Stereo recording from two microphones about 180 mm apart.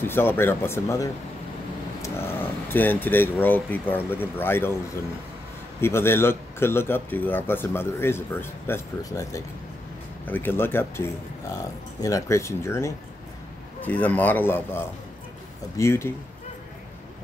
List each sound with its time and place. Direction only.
0.0 s speech: 10° left (ahead or behind)
5.8 s speech: 15° left (ahead or behind)
15.8 s speech: 15° left (ahead or behind)